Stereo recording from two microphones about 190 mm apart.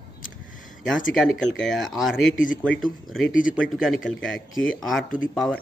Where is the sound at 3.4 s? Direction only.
45° left (ahead or behind).